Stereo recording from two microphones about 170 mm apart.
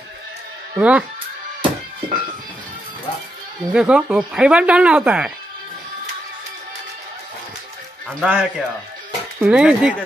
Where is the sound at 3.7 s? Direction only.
5° right (ahead or behind).